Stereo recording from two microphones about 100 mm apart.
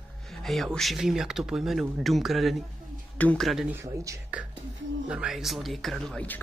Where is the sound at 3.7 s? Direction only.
30° right (ahead or behind).